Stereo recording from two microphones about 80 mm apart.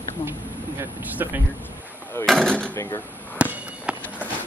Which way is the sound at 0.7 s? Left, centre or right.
Right.